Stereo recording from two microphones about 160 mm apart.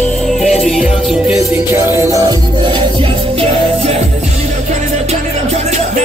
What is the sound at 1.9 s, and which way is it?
Music, 20° right (ahead or behind).